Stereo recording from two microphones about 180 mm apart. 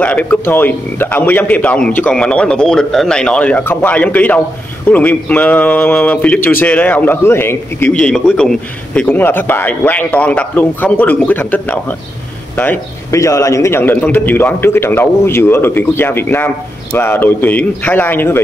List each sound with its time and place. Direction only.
0.0 s speech: 10° left (ahead or behind)